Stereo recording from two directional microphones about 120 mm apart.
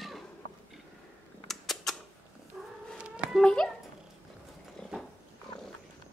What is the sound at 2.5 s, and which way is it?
Cat, 5° right (ahead or behind).